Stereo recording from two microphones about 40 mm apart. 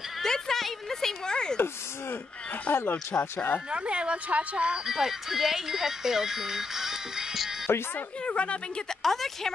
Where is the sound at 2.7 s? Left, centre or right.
Left.